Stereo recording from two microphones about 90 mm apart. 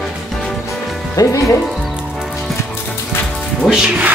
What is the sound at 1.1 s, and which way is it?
Speech, 40° left (ahead or behind).